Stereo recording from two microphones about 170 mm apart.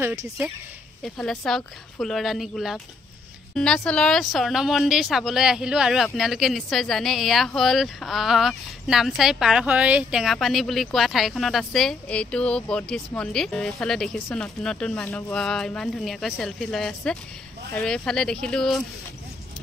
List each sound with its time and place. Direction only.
0.0 s speech: 15° right (ahead or behind)
1.0 s speech: centre (ahead or behind)
15.0 s speech: 15° left (ahead or behind)
15.3 s speech: 5° left (ahead or behind)